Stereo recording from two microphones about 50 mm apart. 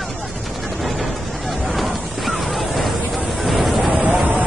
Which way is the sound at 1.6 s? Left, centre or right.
Centre.